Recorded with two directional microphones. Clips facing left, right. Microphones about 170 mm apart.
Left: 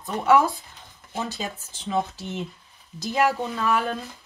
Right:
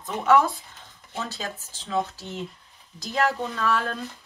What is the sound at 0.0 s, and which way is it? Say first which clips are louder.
Speech: left 1 dB; 10° left (ahead or behind).